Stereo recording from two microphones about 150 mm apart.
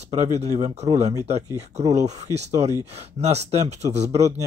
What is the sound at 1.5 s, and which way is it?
Speech, 20° right (ahead or behind).